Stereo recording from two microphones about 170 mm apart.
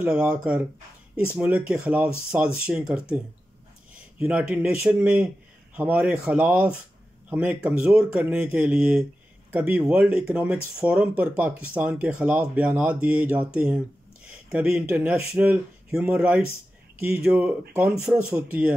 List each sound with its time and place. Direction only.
0.0 s speech: 10° right (ahead or behind)
4.2 s speech: 10° right (ahead or behind)